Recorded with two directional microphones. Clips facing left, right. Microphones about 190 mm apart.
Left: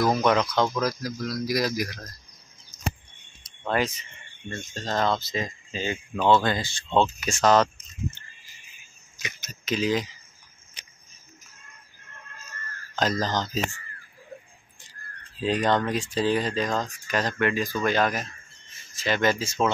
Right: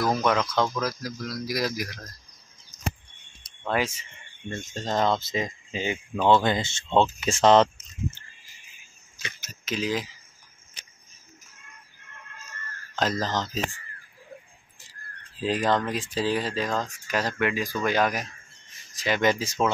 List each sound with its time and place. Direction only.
0.0 s speech: centre (ahead or behind)
1.0 s speech: 5° right (ahead or behind)
3.6 s speech: 5° right (ahead or behind)
4.5 s speech: 20° right (ahead or behind)
9.4 s speech: 5° right (ahead or behind)
12.9 s speech: centre (ahead or behind)
15.4 s speech: centre (ahead or behind)